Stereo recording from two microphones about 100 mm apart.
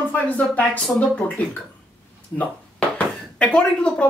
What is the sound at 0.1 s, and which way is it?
Speech, 15° left (ahead or behind).